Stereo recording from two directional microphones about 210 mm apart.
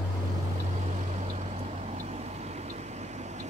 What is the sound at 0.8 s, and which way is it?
Vehicle, 35° right (ahead or behind).